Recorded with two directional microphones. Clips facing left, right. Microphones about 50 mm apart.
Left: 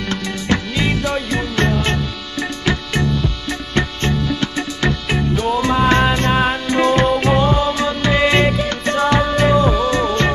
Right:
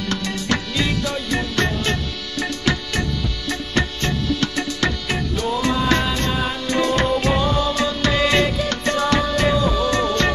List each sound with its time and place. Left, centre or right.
0.1 s music: left
3.7 s music: left